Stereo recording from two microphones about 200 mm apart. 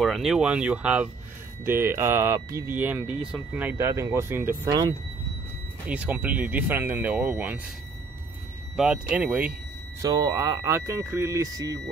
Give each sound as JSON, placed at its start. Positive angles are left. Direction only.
{"t": 0.0, "sound": "speech", "side_deg": 0}
{"t": 4.6, "sound": "speech", "side_deg": -20}
{"t": 5.9, "sound": "speech", "side_deg": -5}
{"t": 8.7, "sound": "speech", "side_deg": -5}
{"t": 10.0, "sound": "speech", "side_deg": -15}